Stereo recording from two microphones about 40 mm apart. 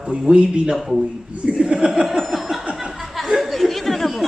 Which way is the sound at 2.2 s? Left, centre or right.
Centre.